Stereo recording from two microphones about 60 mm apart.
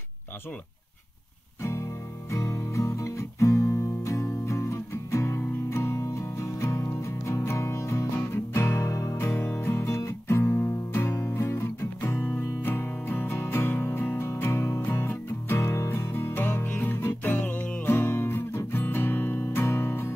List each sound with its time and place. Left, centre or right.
1.6 s music: left
9.2 s music: left